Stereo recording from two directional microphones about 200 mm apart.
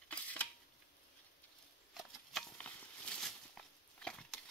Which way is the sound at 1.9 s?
Centre (ahead or behind).